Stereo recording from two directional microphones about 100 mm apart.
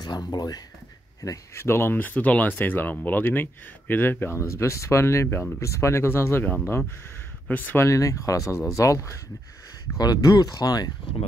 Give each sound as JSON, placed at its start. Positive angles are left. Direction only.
{"t": 0.0, "sound": "speech", "side_deg": 40}
{"t": 1.2, "sound": "speech", "side_deg": 30}
{"t": 7.8, "sound": "speech", "side_deg": 30}
{"t": 9.9, "sound": "speech", "side_deg": 40}